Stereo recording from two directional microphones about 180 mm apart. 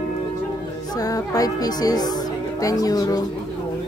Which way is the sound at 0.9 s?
20° left (ahead or behind).